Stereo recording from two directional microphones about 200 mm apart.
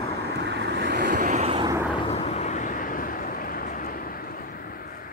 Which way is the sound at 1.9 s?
30° left (ahead or behind).